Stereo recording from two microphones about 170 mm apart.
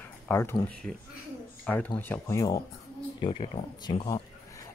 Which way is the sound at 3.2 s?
30° left (ahead or behind).